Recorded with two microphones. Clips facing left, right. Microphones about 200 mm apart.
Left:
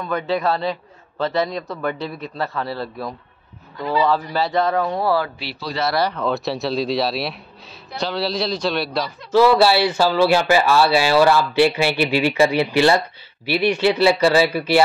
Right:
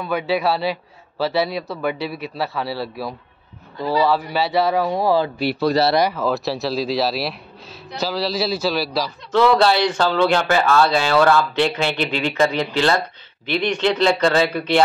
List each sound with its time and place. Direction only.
0.0 s a man's voice: 5° right (ahead or behind)
5.4 s speech: 50° right (ahead or behind)
6.1 s a man's voice: centre (ahead or behind)